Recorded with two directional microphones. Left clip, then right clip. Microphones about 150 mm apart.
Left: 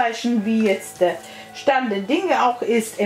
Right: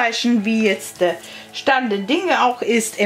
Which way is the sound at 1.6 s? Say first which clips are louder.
Right 2 dB; 45° right (ahead or behind).